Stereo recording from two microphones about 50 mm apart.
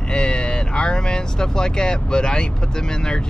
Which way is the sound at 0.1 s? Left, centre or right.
Centre.